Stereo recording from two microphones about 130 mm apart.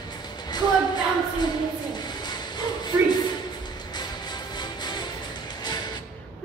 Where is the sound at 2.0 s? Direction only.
35° left (ahead or behind).